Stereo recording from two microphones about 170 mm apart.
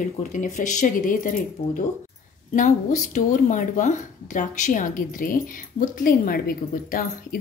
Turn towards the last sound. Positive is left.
turn(degrees=55)  # may be behind; listen again after turning